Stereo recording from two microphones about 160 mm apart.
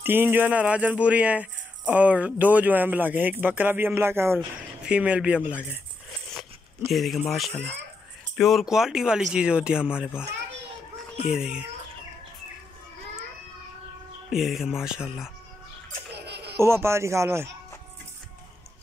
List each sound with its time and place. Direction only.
0.0 s speech: 15° right (ahead or behind)
6.9 s speech: centre (ahead or behind)
8.4 s speech: centre (ahead or behind)
11.2 s speech: 5° right (ahead or behind)
14.3 s speech: centre (ahead or behind)
16.3 s a sound: 90° right
16.5 s speech: 15° right (ahead or behind)